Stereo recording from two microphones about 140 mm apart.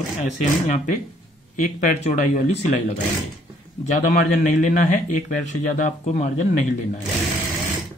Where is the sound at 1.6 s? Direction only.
60° left (ahead or behind).